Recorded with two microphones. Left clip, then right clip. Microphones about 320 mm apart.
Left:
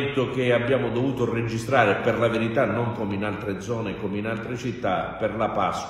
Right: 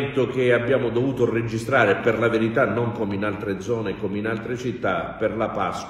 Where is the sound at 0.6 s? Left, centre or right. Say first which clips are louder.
Right 2 dB; centre.